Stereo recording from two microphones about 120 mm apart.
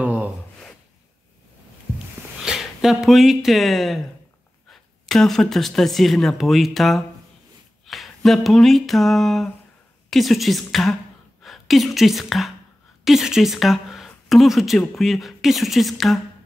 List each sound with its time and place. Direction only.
0.0 s gasp: 15° right (ahead or behind)
2.4 s a woman's voice: 5° right (ahead or behind)